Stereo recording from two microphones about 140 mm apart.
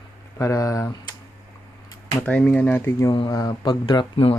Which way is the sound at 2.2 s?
10° left (ahead or behind).